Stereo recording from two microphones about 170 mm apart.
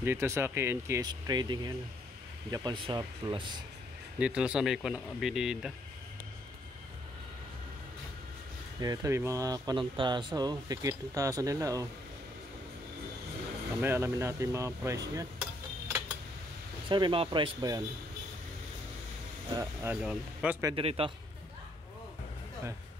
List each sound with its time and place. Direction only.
0.0 s speech: 15° right (ahead or behind)
4.2 s speech: 5° right (ahead or behind)
8.8 s speech: 20° right (ahead or behind)
13.7 s speech: 15° right (ahead or behind)
16.9 s speech: 30° right (ahead or behind)
19.5 s speech: 15° right (ahead or behind)
20.6 s speech: 35° right (ahead or behind)